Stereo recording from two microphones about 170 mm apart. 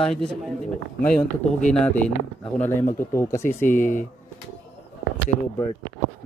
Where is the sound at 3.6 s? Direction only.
50° left (ahead or behind).